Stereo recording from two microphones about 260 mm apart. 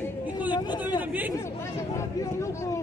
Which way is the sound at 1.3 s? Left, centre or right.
Centre.